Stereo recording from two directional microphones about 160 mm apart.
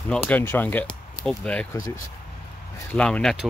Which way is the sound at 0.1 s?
5° left (ahead or behind).